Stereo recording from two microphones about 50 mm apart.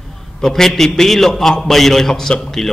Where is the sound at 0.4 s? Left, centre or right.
Centre.